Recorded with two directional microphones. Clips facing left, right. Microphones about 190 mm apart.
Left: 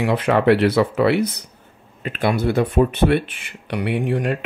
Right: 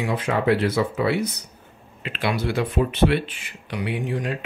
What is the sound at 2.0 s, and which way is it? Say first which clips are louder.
Speech: left 5 dB; 45° left (ahead or behind).